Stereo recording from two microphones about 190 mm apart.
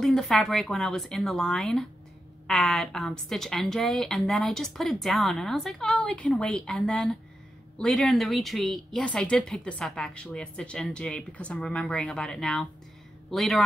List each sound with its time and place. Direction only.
0.0 s speech: centre (ahead or behind)